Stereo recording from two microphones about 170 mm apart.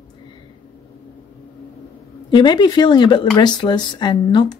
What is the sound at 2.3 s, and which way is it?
Speech, 25° left (ahead or behind).